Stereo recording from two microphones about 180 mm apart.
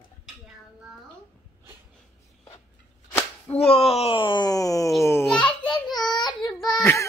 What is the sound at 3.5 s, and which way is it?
Slap, 35° left (ahead or behind).